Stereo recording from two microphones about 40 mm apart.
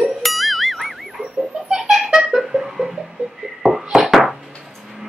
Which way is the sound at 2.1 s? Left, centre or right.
Centre.